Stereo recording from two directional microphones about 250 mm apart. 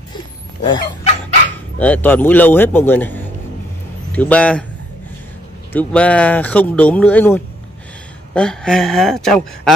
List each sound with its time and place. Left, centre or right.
0.6 s dog: centre
1.8 s a man's voice: centre
5.7 s speech: centre